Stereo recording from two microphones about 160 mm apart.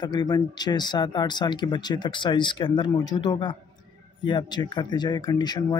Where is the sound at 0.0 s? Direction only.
25° left (ahead or behind).